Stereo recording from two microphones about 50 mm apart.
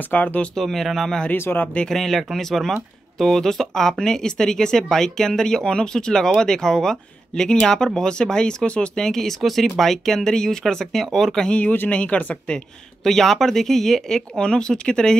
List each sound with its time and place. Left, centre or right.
0.1 s speech: left
0.6 s speech: centre
1.3 s speech: left
1.9 s speech: centre; by 8.9 s left
8.9 s speech: centre
11.4 s speech: left
13.0 s speech: centre